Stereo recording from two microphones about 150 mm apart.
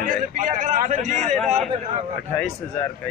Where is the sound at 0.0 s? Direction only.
60° right (ahead or behind).